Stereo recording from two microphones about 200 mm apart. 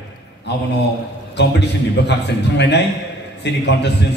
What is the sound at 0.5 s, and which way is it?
A man's voice, 60° left (ahead or behind).